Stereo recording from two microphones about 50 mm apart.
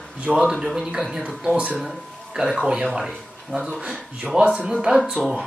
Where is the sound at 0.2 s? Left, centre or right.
Right.